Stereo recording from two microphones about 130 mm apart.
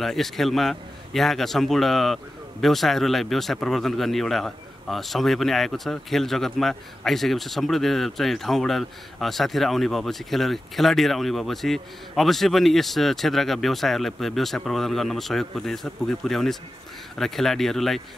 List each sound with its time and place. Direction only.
0.0 s speech: centre (ahead or behind)